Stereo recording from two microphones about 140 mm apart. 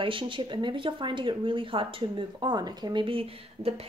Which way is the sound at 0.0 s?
35° right (ahead or behind).